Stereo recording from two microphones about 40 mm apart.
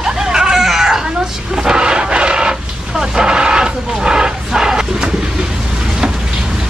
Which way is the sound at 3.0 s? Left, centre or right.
Centre.